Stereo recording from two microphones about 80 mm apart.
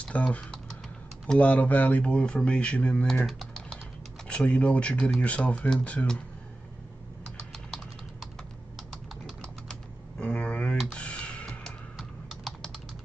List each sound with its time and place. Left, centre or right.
0.0 s speech: centre
3.3 s typing: centre
4.3 s speech: centre
7.2 s typing: centre
10.9 s music: centre
12.0 s typing: centre